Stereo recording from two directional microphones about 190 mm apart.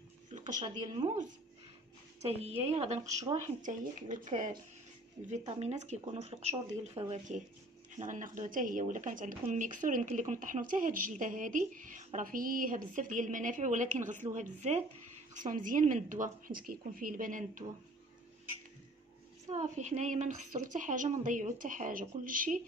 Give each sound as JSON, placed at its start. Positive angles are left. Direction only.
{"t": 0.3, "sound": "a sound", "side_deg": -40}
{"t": 0.6, "sound": "speech", "side_deg": -25}
{"t": 2.6, "sound": "speech", "side_deg": -35}
{"t": 3.1, "sound": "speech", "side_deg": -15}
{"t": 3.6, "sound": "speech", "side_deg": -40}
{"t": 5.6, "sound": "speech", "side_deg": -35}
{"t": 19.5, "sound": "speech", "side_deg": -40}